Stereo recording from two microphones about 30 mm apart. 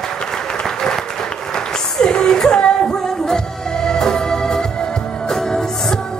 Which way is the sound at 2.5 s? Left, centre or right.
Left.